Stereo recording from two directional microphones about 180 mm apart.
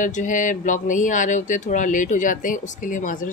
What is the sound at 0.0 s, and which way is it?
Speech, 45° left (ahead or behind).